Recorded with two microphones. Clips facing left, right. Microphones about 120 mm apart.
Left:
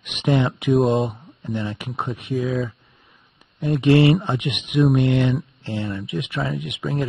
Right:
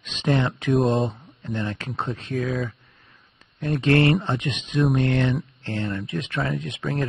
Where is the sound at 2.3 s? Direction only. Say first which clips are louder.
Left 3 dB; centre (ahead or behind).